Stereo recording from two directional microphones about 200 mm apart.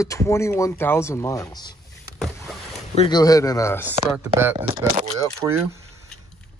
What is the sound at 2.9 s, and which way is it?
Speech, 25° left (ahead or behind).